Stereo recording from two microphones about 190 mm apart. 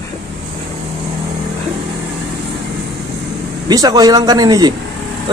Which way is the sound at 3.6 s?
20° right (ahead or behind).